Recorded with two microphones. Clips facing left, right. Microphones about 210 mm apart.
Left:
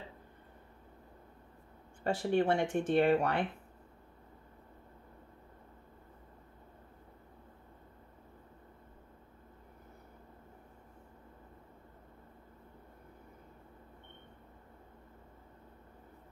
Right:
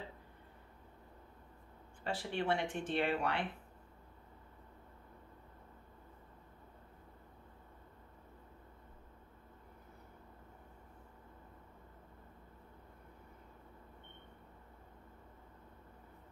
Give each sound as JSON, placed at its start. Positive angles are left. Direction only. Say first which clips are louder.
{"t": 2.0, "sound": "speech", "louder": "left 7 dB", "side_deg": 45}